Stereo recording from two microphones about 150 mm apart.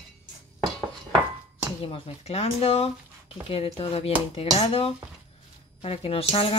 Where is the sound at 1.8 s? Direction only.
40° left (ahead or behind).